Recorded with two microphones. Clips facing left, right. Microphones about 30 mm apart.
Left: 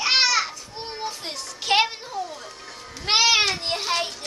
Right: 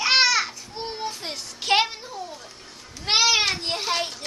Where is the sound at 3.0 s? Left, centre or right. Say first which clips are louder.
Left 1 dB; left.